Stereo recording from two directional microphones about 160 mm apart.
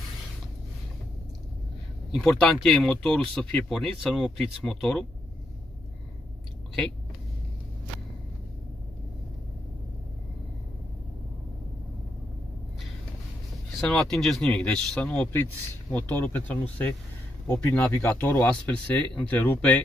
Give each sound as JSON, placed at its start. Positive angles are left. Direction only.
{"t": 2.1, "sound": "speech", "side_deg": 0}
{"t": 13.7, "sound": "speech", "side_deg": 0}